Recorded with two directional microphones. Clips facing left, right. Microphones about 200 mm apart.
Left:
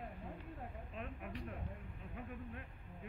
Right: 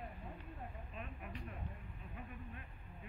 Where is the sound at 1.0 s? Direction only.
70° left (ahead or behind).